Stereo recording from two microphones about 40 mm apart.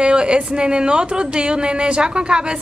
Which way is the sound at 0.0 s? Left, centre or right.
Right.